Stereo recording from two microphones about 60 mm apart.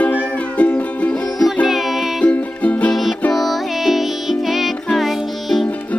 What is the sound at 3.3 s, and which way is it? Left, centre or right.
Music, centre.